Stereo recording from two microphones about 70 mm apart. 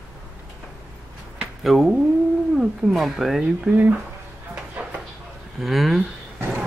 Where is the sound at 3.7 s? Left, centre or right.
Right.